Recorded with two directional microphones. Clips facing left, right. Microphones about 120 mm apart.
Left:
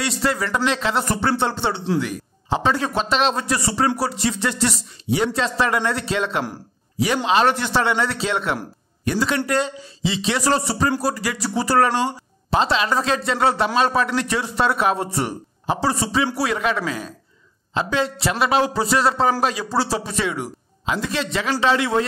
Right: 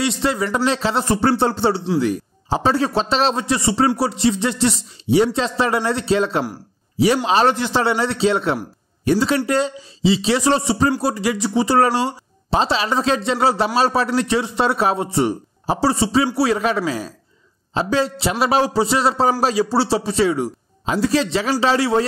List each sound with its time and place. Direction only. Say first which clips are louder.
0.0 s speech: right 3 dB; 25° right (ahead or behind)
15.6 s speech: right 3 dB; 35° right (ahead or behind)